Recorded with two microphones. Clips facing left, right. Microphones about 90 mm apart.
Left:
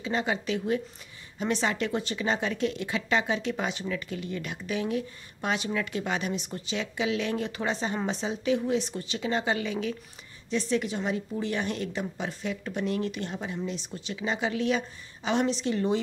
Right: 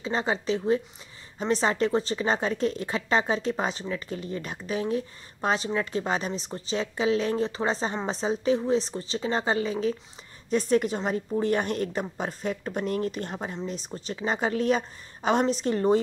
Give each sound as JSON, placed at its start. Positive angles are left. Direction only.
{"t": 0.0, "sound": "a woman's voice", "side_deg": -35}